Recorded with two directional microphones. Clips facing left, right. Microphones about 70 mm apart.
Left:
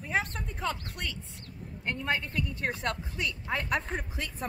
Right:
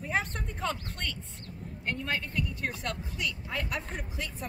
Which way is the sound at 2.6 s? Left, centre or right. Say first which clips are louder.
Left 3 dB; left.